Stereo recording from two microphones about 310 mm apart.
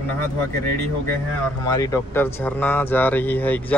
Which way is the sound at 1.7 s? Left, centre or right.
Centre.